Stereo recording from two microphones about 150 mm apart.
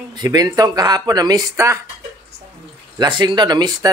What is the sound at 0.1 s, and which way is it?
Speech, 25° right (ahead or behind).